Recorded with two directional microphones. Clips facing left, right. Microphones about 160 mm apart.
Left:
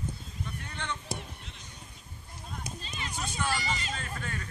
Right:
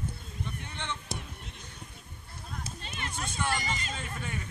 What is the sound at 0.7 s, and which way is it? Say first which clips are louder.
Speech: left 3 dB; 20° right (ahead or behind).